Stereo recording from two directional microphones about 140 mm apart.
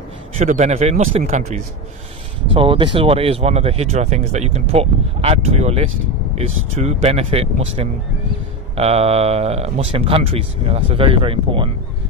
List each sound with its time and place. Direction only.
0.4 s speech: 55° right (ahead or behind)
2.5 s speech: 40° right (ahead or behind)